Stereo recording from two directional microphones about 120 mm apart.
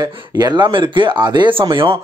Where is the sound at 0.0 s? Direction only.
35° right (ahead or behind).